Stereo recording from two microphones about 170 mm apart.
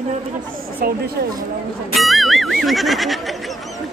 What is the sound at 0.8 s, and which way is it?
Speech, 60° right (ahead or behind).